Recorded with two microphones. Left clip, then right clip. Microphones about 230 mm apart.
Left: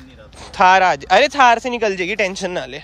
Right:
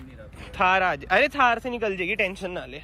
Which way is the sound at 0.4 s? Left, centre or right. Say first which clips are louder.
Left 9 dB; left.